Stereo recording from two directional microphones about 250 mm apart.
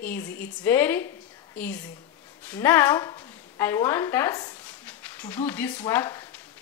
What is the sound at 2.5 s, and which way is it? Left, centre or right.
Speech, centre.